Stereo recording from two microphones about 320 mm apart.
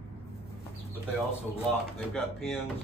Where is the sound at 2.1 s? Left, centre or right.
Centre.